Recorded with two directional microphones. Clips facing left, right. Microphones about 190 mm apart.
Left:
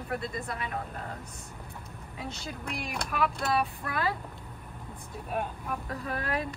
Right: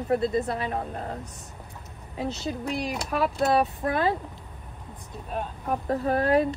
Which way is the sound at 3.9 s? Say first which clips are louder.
Right 7 dB; 25° right (ahead or behind).